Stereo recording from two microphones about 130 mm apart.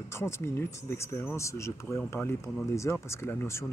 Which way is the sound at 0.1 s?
20° left (ahead or behind).